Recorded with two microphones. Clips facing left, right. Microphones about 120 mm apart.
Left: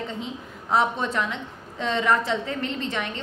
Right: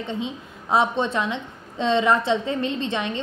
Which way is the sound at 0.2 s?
20° right (ahead or behind).